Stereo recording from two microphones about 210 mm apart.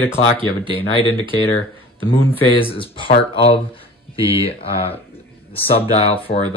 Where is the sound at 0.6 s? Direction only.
25° left (ahead or behind).